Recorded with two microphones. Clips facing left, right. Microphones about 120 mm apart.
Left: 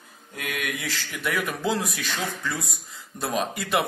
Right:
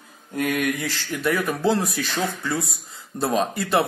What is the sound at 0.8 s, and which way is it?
Speech, 40° right (ahead or behind).